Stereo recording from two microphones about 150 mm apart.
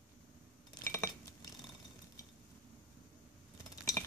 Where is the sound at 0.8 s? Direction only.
20° left (ahead or behind).